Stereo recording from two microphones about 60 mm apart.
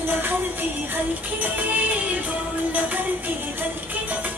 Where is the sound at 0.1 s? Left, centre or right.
Right.